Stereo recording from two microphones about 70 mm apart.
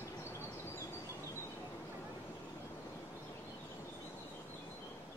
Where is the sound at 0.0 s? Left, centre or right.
Left.